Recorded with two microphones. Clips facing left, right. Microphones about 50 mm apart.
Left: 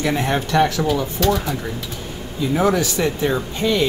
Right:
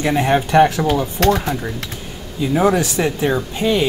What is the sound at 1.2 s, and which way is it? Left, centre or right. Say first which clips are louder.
Speech: right 4 dB; right.